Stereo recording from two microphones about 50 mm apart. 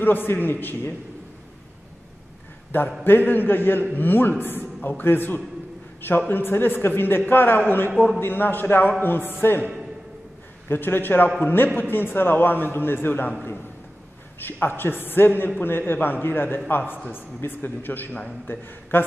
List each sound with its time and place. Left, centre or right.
0.0 s a man's voice: left
3.0 s a man's voice: left
10.7 s a man's voice: left
14.4 s a man's voice: left